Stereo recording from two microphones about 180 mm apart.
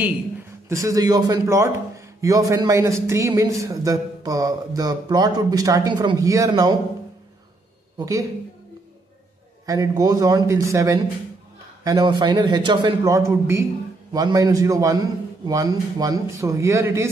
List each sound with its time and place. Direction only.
0.0 s a man's voice: 15° right (ahead or behind)
8.0 s a man's voice: 20° right (ahead or behind)
9.7 s a man's voice: 20° right (ahead or behind)